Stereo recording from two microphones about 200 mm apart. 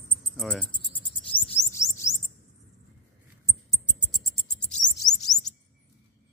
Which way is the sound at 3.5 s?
Centre (ahead or behind).